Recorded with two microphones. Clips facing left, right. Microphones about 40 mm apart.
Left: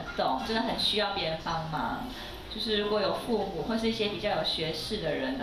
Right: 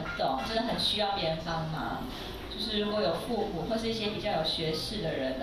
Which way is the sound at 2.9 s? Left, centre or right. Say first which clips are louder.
Even; left.